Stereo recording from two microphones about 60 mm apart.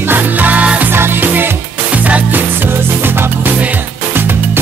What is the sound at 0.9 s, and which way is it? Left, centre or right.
Music, right.